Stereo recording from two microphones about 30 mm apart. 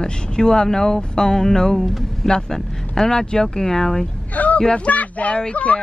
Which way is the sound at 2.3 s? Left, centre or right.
Left.